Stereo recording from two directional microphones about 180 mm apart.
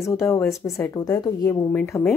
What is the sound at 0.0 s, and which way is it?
A woman's voice, 15° left (ahead or behind).